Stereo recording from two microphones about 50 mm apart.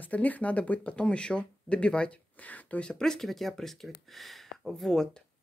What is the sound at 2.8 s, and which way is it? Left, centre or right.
Speech, centre.